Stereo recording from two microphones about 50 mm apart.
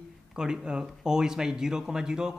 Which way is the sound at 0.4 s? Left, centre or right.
Centre.